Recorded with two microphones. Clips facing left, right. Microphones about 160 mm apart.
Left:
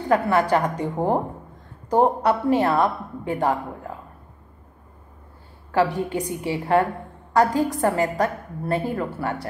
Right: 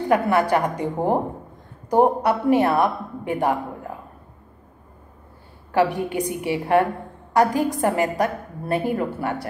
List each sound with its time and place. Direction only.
0.1 s a woman's voice: 15° right (ahead or behind)
5.7 s a woman's voice: 15° right (ahead or behind)